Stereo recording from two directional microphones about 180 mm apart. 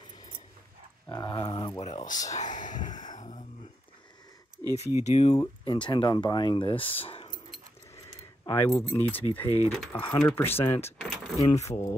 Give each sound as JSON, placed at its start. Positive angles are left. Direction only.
{"t": 1.0, "sound": "dog", "side_deg": 25}
{"t": 1.8, "sound": "a sound", "side_deg": 40}
{"t": 2.3, "sound": "speech", "side_deg": 45}
{"t": 2.9, "sound": "a sound", "side_deg": 45}
{"t": 5.0, "sound": "speech", "side_deg": 40}
{"t": 5.3, "sound": "speech", "side_deg": 25}
{"t": 8.5, "sound": "speech", "side_deg": 15}
{"t": 11.0, "sound": "keys jangling", "side_deg": 0}
{"t": 11.5, "sound": "speech", "side_deg": 15}